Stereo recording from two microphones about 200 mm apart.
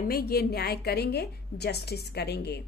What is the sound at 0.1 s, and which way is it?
Speech, 50° left (ahead or behind).